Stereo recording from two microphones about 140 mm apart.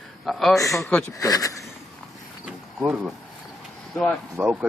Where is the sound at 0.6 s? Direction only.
20° left (ahead or behind).